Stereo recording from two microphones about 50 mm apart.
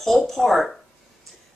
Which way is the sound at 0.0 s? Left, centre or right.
Centre.